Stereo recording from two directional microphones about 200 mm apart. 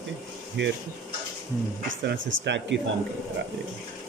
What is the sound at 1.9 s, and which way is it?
Speech, 60° right (ahead or behind).